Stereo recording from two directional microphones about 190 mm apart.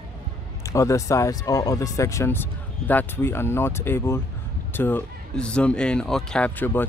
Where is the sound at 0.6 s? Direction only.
15° left (ahead or behind).